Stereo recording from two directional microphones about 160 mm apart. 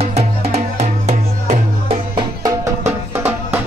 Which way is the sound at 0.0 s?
40° right (ahead or behind).